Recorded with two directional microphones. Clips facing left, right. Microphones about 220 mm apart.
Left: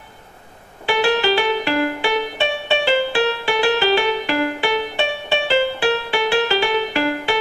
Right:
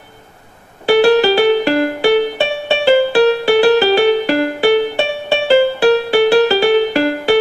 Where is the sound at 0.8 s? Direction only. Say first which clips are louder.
Right 8 dB; 40° right (ahead or behind).